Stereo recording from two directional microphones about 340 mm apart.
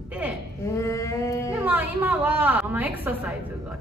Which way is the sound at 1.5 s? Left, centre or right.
Centre.